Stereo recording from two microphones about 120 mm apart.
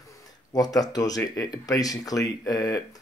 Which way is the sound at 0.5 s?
30° left (ahead or behind).